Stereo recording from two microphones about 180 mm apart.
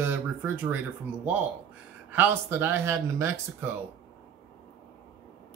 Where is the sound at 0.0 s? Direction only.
10° right (ahead or behind).